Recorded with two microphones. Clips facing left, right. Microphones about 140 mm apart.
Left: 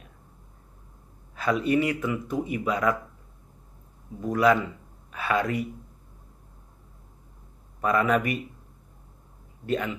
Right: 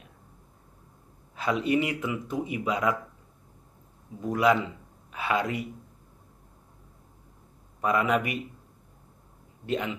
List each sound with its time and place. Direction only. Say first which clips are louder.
1.3 s speech: left 2 dB; 20° right (ahead or behind)
4.3 s speech: left 2 dB; 20° right (ahead or behind)
7.8 s speech: left 2 dB; 20° right (ahead or behind)
9.7 s speech: left 2 dB; 20° right (ahead or behind)